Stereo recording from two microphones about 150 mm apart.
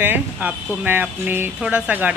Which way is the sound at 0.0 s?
10° right (ahead or behind).